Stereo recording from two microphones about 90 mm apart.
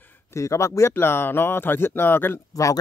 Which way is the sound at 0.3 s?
35° left (ahead or behind).